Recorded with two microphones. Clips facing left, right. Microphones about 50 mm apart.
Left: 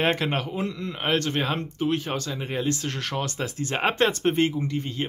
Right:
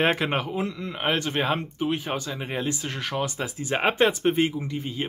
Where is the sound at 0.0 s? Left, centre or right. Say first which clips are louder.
Right 1 dB; centre.